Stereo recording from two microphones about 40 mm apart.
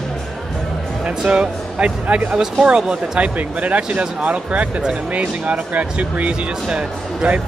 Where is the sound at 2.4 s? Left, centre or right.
Centre.